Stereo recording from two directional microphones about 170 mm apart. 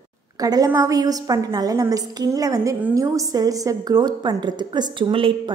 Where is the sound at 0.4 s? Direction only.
20° right (ahead or behind).